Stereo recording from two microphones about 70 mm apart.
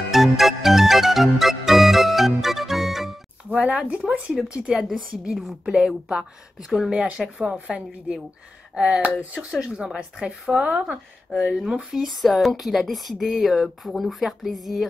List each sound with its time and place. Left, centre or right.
0.1 s music: centre
3.4 s a sound: centre
4.3 s speech: centre
6.9 s speech: centre
11.5 s speech: centre